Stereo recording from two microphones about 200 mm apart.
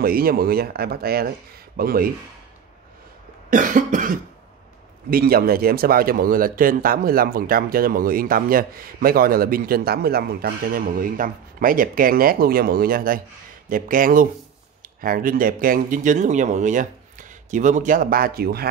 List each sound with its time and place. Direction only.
0.0 s speech: 50° right (ahead or behind)
3.4 s cough: 40° right (ahead or behind)
5.1 s speech: 50° right (ahead or behind)